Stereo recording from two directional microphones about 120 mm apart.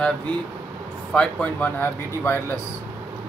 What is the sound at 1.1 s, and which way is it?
Speech, 10° left (ahead or behind).